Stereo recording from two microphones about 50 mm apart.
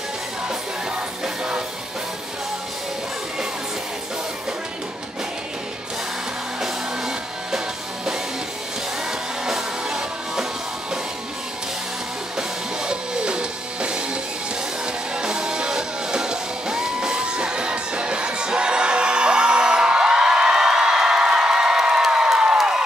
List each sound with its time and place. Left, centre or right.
1.2 s music: centre
6.6 s music: centre
9.5 s music: centre
12.4 s music: centre
22.1 s a sound: centre